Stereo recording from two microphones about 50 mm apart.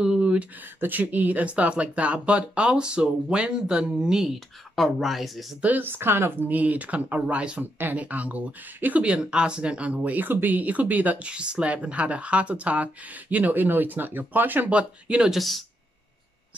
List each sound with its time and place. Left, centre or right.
0.0 s a sound: centre
0.7 s speech: right; by 4.3 s centre
4.7 s speech: centre
5.8 s a woman's voice: right
6.5 s speech: right
11.2 s speech: centre; by 14.7 s right
14.7 s speech: right
15.3 s speech: centre